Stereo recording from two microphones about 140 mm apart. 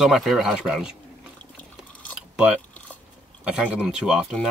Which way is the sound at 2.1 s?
5° right (ahead or behind).